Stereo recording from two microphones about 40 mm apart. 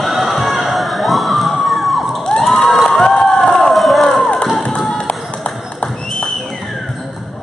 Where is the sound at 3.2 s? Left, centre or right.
Centre.